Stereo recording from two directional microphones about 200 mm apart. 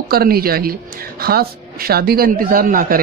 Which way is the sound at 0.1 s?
50° right (ahead or behind).